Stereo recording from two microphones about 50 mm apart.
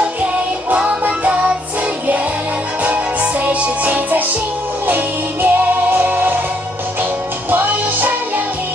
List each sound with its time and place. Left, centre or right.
0.7 s music: right
2.8 s music: right
7.5 s music: right